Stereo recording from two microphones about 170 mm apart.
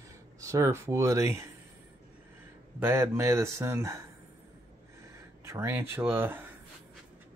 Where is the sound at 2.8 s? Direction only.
15° right (ahead or behind).